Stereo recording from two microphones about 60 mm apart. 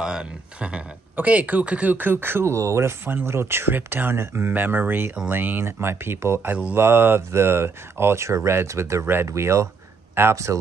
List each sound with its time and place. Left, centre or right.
0.0 s speech: centre; by 2.5 s right
2.5 s speech: right
3.3 s speech: right
4.6 s speech: right